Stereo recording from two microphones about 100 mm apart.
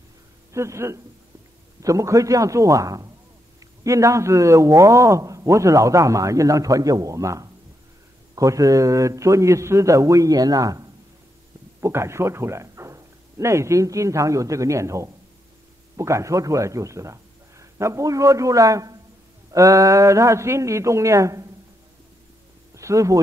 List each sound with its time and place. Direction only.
0.5 s a man's voice: 30° right (ahead or behind)
22.8 s speech: 30° right (ahead or behind)